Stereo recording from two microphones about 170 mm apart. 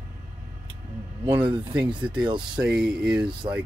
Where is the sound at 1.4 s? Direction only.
30° right (ahead or behind).